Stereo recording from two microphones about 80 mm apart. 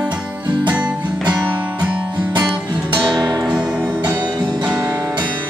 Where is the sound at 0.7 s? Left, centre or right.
Centre.